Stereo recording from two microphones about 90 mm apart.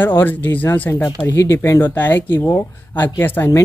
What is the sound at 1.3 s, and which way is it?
Speech, 30° left (ahead or behind).